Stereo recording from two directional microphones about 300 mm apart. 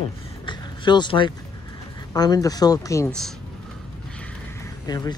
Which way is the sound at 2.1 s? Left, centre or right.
Centre.